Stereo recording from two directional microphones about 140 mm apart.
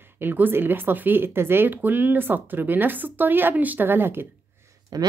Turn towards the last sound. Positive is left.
turn(degrees=-20)  # may be behind; listen again after turning